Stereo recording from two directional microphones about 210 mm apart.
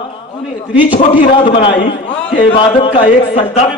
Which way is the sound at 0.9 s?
25° left (ahead or behind).